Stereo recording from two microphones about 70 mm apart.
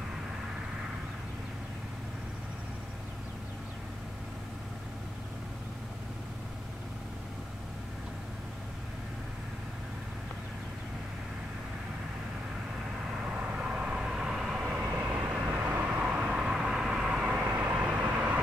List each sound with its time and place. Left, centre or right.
13.2 s vehicle: centre
15.1 s vehicle: centre